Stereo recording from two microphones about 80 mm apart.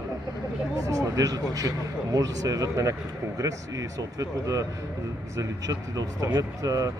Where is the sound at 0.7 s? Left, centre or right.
Right.